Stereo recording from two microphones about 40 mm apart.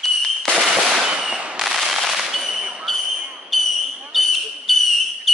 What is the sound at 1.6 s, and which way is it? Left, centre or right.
Firecracker, centre.